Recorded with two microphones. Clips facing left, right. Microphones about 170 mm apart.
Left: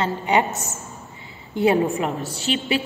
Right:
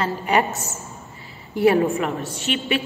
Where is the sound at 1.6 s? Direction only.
25° left (ahead or behind).